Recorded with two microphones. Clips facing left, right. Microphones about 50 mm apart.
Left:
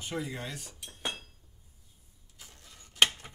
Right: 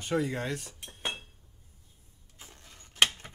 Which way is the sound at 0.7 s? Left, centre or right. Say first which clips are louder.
Right 1 dB; right.